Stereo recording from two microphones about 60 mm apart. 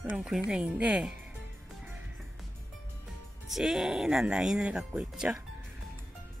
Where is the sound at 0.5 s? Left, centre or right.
Centre.